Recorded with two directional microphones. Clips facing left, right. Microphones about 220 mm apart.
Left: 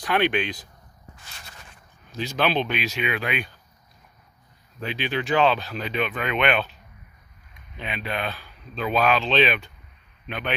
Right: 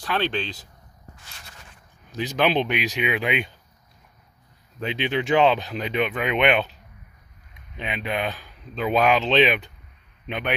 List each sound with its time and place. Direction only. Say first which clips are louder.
0.0 s speech: left 3 dB; 15° left (ahead or behind)
2.1 s speech: right 2 dB; 20° right (ahead or behind)
4.9 s speech: right 2 dB; 20° right (ahead or behind)
7.7 s a man's voice: right 2 dB; 20° right (ahead or behind)